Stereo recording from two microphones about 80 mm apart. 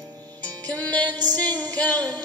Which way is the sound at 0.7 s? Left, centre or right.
Centre.